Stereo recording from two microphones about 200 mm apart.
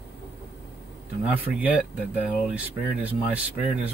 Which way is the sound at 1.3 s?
10° right (ahead or behind).